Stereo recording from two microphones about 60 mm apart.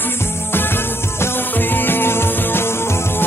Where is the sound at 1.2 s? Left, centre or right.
Left.